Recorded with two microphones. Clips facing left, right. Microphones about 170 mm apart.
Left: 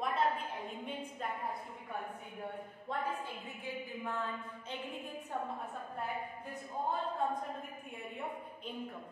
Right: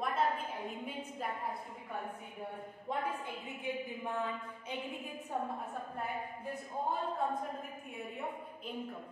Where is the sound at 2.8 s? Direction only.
15° right (ahead or behind).